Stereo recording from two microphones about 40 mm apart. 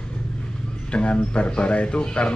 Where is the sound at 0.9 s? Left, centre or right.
Left.